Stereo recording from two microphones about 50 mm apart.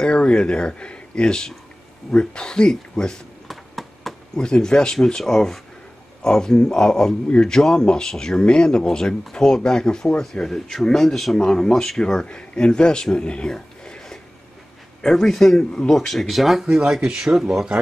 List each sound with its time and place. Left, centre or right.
0.0 s speech: centre
3.4 s a sound: centre
4.4 s speech: centre
16.9 s speech: centre